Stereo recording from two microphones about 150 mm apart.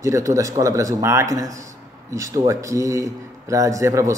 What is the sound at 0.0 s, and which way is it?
A man's voice, 20° right (ahead or behind).